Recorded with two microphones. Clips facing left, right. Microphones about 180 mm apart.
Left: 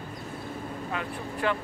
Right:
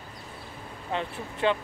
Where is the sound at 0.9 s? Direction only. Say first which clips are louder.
Right 5 dB; 25° right (ahead or behind).